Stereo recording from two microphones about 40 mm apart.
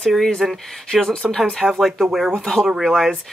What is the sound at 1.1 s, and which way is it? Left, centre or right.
Speech, left.